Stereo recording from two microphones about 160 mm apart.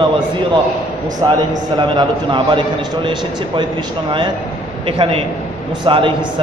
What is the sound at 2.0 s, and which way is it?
Speech, 30° right (ahead or behind).